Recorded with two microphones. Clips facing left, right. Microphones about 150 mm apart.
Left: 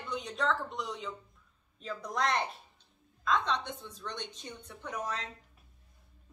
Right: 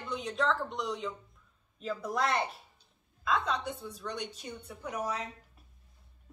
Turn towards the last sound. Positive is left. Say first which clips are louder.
# right 2 dB
turn(degrees=-10)  # may be behind; listen again after turning